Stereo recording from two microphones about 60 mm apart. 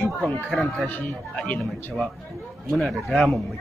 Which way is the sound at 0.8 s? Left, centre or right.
Left.